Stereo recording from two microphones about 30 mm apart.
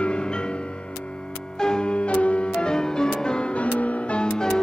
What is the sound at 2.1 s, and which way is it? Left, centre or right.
Music, left.